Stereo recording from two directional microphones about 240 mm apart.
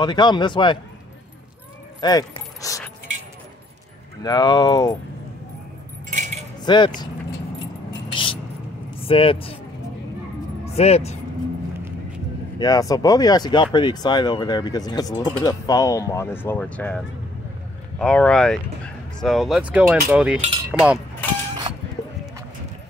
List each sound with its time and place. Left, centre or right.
0.0 s speech: centre
2.0 s speech: centre
4.2 s speech: centre
6.0 s keys jangling: right
6.6 s speech: centre
8.1 s a sound: left
9.0 s speech: left
10.6 s speech: left
12.5 s speech: centre
21.7 s music: centre